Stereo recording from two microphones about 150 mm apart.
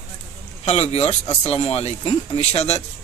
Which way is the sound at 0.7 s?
45° left (ahead or behind).